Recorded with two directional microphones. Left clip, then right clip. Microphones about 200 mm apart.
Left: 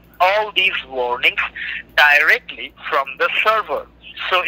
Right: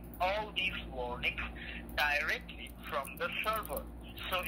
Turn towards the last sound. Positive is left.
turn(degrees=50)  # may be behind; listen again after turning